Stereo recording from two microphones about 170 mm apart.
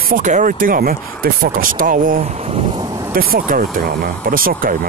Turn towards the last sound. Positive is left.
turn(degrees=-55)  # may be behind; listen again after turning